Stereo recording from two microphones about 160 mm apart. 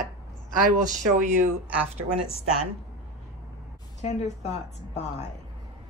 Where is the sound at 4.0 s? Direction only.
45° left (ahead or behind).